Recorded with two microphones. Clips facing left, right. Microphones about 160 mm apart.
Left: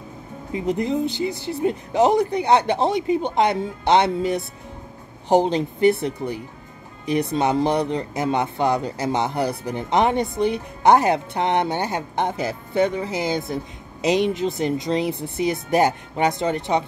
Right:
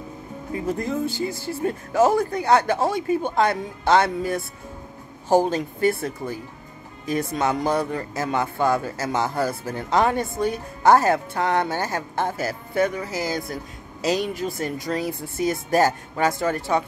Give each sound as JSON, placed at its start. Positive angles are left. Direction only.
{"t": 0.5, "sound": "speech", "side_deg": 20}